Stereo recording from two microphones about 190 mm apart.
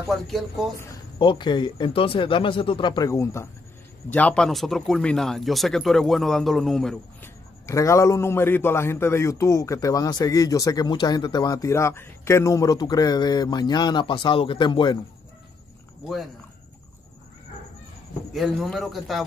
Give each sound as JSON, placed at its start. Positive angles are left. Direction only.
{"t": 0.1, "sound": "speech", "side_deg": 0}
{"t": 1.1, "sound": "a man's voice", "side_deg": 25}
{"t": 7.6, "sound": "a man's voice", "side_deg": 15}
{"t": 18.3, "sound": "speech", "side_deg": 0}